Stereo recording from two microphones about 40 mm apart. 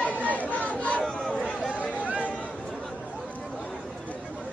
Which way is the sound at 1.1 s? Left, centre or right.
Centre.